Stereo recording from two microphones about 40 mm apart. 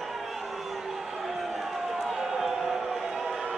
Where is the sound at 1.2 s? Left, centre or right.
Centre.